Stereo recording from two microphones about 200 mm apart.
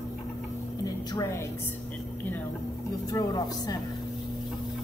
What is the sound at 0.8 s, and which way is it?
Speech, 20° left (ahead or behind).